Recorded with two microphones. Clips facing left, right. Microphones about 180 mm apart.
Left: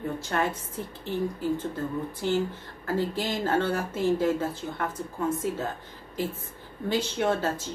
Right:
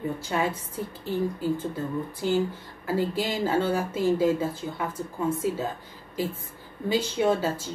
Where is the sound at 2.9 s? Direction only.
10° right (ahead or behind).